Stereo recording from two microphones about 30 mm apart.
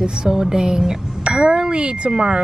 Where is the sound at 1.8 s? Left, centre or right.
Right.